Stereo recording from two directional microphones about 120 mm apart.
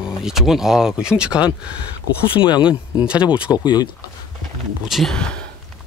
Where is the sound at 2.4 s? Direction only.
40° left (ahead or behind).